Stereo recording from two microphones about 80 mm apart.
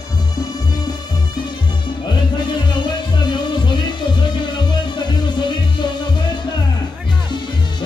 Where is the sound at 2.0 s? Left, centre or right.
Left.